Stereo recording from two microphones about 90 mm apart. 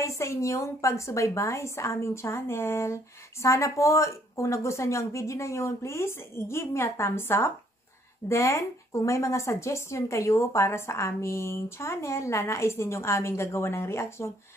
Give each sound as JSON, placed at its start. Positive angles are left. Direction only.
{"t": 0.0, "sound": "speech", "side_deg": 35}